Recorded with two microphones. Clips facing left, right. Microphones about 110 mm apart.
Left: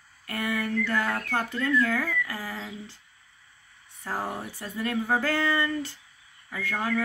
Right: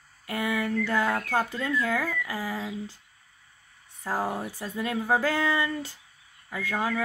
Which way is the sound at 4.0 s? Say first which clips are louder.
Right 3 dB; 15° right (ahead or behind).